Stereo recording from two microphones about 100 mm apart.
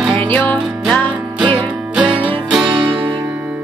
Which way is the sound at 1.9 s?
10° right (ahead or behind).